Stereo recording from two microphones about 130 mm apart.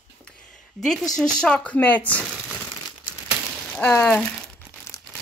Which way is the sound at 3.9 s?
15° left (ahead or behind).